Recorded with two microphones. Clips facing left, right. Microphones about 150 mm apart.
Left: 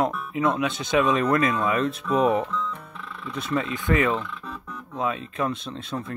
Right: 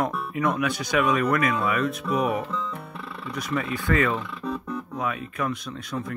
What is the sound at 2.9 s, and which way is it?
Music, 35° right (ahead or behind).